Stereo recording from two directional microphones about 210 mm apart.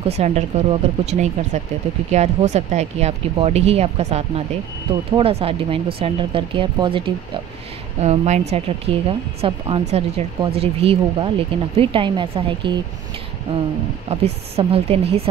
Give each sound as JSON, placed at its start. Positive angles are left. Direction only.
{"t": 0.0, "sound": "speech", "side_deg": -30}
{"t": 14.0, "sound": "speech", "side_deg": -30}